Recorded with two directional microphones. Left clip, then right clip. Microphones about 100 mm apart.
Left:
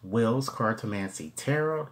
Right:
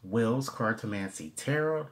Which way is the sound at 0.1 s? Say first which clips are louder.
Left 3 dB; 10° left (ahead or behind).